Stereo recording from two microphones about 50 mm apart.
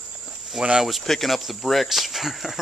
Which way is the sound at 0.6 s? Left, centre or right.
Centre.